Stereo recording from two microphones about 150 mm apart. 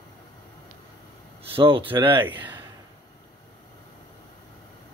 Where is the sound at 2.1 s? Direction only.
15° right (ahead or behind).